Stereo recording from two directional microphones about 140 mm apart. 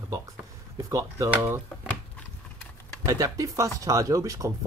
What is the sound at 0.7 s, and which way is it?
Speech, 20° right (ahead or behind).